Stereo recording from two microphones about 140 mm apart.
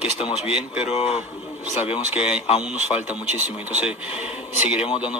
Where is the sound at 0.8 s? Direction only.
45° left (ahead or behind).